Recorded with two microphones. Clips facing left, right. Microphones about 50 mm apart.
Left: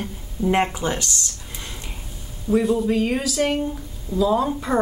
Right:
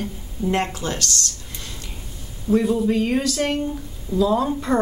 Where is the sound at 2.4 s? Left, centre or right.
Centre.